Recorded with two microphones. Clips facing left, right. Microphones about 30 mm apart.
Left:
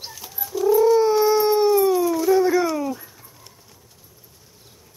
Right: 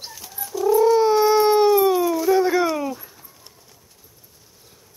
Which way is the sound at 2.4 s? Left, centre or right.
Centre.